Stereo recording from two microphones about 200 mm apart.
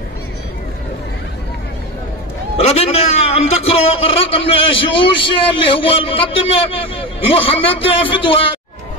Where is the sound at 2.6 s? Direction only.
30° left (ahead or behind).